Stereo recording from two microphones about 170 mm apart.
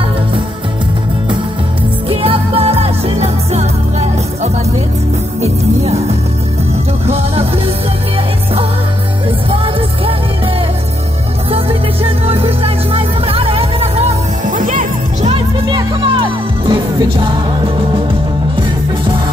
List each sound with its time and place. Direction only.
2.0 s music: 35° right (ahead or behind)
7.1 s music: 35° right (ahead or behind)
11.5 s music: 35° right (ahead or behind)
14.5 s music: 50° right (ahead or behind)
15.2 s music: 30° right (ahead or behind)